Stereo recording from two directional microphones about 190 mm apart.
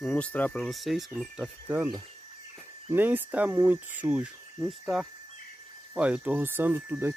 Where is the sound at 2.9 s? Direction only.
10° right (ahead or behind).